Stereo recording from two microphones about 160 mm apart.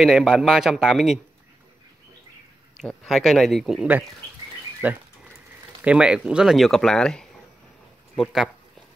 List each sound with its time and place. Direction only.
0.0 s speech: 5° right (ahead or behind)
2.8 s speech: 5° left (ahead or behind)